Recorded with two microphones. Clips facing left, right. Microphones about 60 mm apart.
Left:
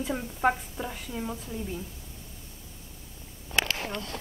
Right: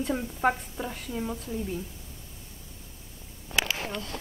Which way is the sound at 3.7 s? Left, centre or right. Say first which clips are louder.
Even; centre.